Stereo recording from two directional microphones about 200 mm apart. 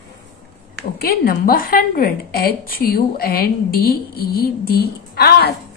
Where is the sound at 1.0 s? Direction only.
50° left (ahead or behind).